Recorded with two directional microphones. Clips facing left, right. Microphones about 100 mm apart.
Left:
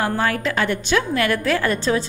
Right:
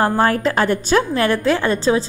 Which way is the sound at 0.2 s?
40° right (ahead or behind).